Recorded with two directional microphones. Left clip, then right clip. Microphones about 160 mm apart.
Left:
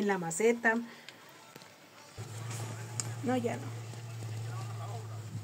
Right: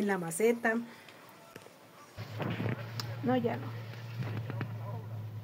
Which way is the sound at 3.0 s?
20° right (ahead or behind).